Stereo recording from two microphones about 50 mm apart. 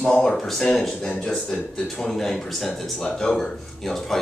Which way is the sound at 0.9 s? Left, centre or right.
Centre.